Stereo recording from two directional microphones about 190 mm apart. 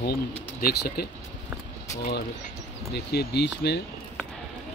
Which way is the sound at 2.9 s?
60° left (ahead or behind).